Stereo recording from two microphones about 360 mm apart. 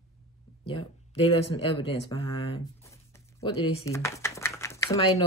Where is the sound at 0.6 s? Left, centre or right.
Centre.